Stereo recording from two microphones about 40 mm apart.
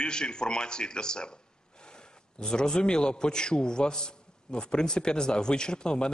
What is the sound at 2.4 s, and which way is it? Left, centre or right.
A man's voice, centre.